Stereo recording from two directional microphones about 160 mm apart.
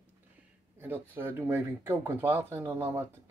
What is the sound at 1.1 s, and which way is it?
Speech, 15° right (ahead or behind).